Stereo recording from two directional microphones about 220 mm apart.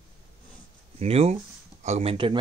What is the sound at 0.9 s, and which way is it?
Speech, 30° right (ahead or behind).